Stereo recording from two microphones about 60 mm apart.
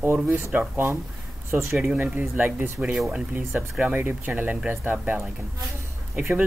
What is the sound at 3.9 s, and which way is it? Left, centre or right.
Speech, right.